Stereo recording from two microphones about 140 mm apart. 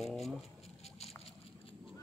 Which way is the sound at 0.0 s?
Centre (ahead or behind).